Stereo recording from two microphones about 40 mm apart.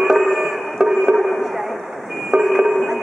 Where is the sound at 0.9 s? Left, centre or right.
Centre.